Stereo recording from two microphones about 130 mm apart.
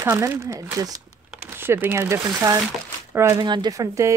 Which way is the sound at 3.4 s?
35° right (ahead or behind).